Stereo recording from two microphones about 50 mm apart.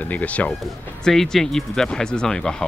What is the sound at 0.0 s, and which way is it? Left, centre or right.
Speech, left.